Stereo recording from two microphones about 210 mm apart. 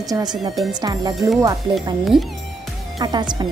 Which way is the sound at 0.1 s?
20° right (ahead or behind).